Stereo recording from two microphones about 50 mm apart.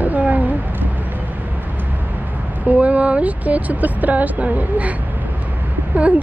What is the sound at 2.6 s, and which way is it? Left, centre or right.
Speech, right.